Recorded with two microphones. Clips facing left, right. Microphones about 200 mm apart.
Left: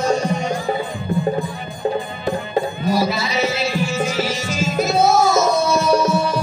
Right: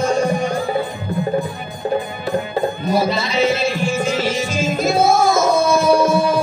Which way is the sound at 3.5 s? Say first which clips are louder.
Right 3 dB; 55° right (ahead or behind).